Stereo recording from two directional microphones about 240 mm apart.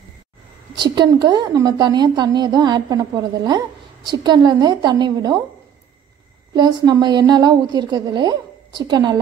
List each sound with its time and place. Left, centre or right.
0.7 s a woman's voice: centre
6.5 s a woman's voice: centre